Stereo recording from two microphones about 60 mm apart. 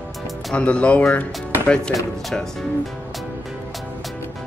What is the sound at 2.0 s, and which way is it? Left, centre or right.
Speech, centre.